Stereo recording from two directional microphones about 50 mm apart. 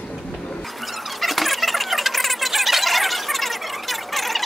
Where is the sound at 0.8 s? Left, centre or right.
Centre.